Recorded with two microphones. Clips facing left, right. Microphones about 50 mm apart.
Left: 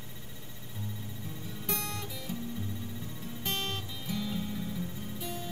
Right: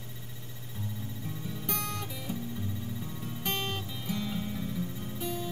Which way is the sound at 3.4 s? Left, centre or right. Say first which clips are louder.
Right 1 dB; centre.